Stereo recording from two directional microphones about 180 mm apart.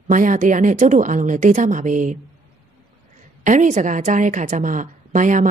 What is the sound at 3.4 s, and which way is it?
A woman's voice, 45° right (ahead or behind).